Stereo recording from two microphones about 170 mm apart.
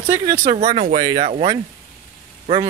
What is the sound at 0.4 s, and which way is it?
Speech, 40° right (ahead or behind).